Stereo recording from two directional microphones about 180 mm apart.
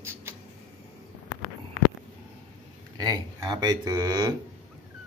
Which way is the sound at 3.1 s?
20° right (ahead or behind).